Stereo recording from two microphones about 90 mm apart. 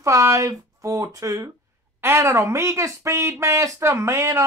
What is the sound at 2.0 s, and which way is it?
A man's voice, 30° right (ahead or behind).